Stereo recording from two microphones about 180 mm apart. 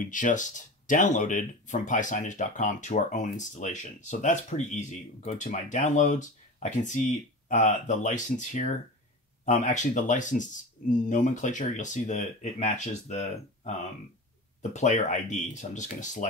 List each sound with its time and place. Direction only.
0.0 s speech: 45° left (ahead or behind)